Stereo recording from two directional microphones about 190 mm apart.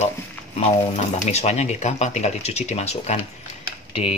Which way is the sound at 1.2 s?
35° left (ahead or behind).